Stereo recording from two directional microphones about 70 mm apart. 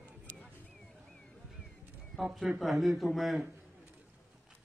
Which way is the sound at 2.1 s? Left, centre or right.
Centre.